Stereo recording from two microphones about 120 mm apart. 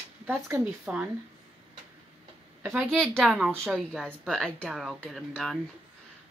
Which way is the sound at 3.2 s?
Centre (ahead or behind).